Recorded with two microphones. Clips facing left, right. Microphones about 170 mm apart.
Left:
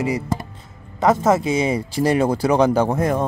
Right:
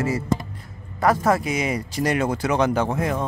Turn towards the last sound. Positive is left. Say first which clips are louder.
# left 4 dB
turn(degrees=40)  # may be behind; listen again after turning